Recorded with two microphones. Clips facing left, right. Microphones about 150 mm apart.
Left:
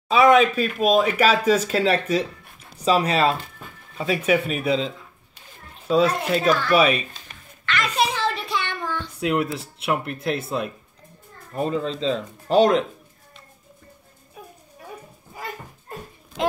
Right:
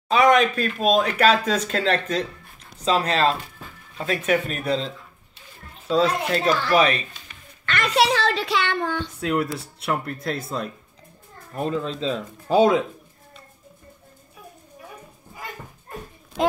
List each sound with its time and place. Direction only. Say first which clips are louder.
0.1 s speech: left 2 dB; 5° left (ahead or behind)
7.6 s a sound: right 2 dB; 55° right (ahead or behind)
8.1 s speech: right 3 dB; 90° right; by 9.0 s 65° right (ahead or behind)
9.1 s speech: left 5 dB; 10° left (ahead or behind)